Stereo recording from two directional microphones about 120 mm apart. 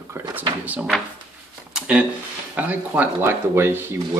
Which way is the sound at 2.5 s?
15° right (ahead or behind).